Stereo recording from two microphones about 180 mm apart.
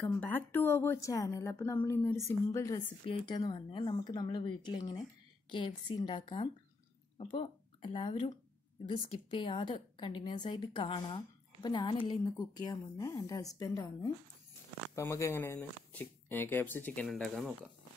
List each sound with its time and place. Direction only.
0.0 s a woman's voice: 10° left (ahead or behind)